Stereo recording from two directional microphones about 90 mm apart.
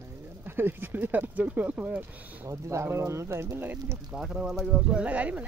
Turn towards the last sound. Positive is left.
turn(degrees=-15)  # may be behind; listen again after turning